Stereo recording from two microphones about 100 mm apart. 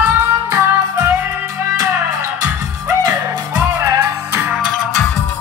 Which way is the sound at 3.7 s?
25° right (ahead or behind).